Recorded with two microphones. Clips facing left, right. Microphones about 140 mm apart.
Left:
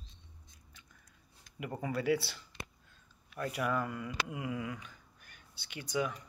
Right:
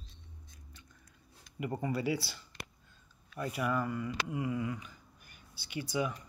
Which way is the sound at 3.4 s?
Centre (ahead or behind).